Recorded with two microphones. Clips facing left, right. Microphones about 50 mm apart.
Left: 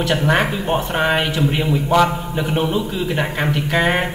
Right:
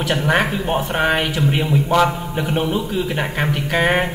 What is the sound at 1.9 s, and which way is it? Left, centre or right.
Speech, centre.